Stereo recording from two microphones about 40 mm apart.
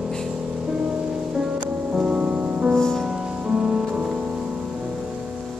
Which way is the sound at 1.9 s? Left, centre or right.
Right.